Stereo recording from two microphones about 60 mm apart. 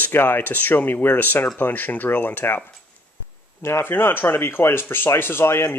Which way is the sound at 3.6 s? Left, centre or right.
Left.